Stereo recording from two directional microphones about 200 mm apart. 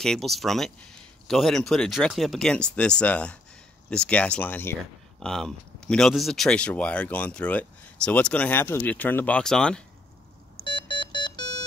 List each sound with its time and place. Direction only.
0.0 s speech: centre (ahead or behind)
10.6 s alarm clock: 25° left (ahead or behind)